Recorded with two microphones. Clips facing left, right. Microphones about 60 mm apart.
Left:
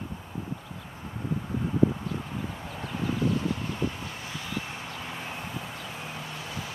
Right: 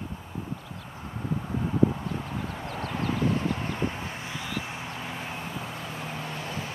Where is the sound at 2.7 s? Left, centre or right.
Right.